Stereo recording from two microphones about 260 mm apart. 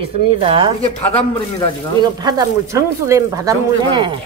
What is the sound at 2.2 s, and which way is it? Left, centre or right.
Speech, centre.